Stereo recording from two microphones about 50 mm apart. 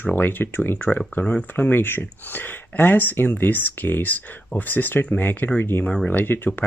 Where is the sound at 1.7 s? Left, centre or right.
Left.